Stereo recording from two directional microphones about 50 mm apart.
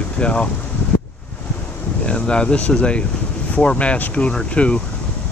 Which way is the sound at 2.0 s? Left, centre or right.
Left.